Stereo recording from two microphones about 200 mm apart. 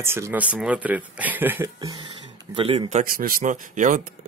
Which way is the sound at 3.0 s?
45° right (ahead or behind).